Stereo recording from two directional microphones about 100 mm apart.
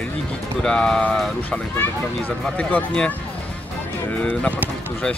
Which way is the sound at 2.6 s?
15° left (ahead or behind).